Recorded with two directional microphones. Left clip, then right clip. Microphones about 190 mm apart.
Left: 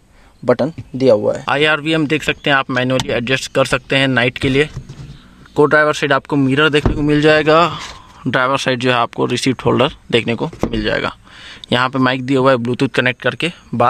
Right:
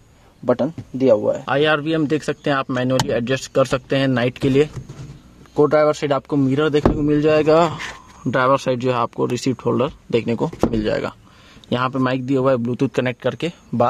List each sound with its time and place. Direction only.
0.5 s speech: 15° left (ahead or behind)
1.4 s speech: 5° left (ahead or behind)
5.6 s speech: 10° left (ahead or behind)
7.4 s speech: 10° right (ahead or behind)
8.2 s speech: centre (ahead or behind)
10.7 s speech: 5° right (ahead or behind)